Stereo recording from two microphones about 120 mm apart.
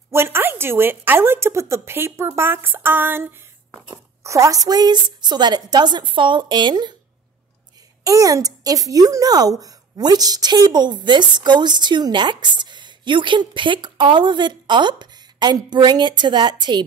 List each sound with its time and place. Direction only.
0.1 s a woman's voice: 20° right (ahead or behind); by 6.9 s 40° right (ahead or behind)
8.0 s a child's voice: 30° right (ahead or behind)